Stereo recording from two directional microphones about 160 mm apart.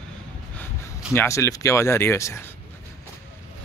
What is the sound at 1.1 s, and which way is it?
Speech, 15° left (ahead or behind).